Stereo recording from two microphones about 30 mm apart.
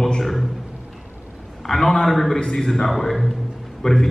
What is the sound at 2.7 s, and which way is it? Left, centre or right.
A man's voice, centre.